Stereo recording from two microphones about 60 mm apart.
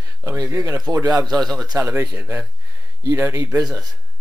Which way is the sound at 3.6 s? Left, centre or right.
Centre.